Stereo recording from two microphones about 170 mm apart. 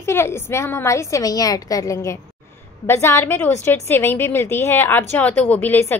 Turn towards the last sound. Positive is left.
turn(degrees=10)  # may be behind; listen again after turning